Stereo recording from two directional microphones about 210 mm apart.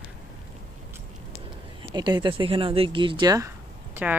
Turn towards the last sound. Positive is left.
turn(degrees=-10)  # may be behind; listen again after turning